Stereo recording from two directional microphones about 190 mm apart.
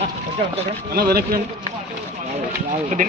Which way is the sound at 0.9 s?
55° right (ahead or behind).